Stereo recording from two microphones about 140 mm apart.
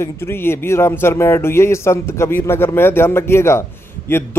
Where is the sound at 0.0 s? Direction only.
15° left (ahead or behind).